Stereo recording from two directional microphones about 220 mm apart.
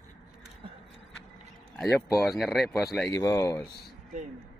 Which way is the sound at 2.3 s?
Centre (ahead or behind).